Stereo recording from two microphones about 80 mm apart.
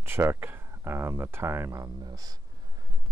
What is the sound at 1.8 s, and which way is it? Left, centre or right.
Speech, right.